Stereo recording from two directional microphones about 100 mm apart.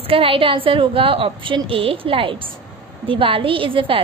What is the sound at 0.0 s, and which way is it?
A woman's voice, 65° right (ahead or behind).